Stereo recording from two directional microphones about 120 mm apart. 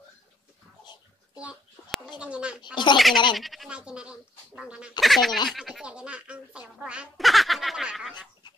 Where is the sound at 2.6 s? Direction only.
40° left (ahead or behind).